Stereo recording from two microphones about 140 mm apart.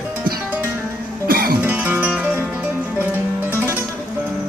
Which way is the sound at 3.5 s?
15° right (ahead or behind).